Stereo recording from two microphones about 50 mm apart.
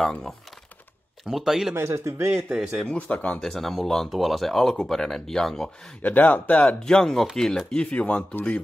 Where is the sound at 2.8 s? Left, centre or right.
Left.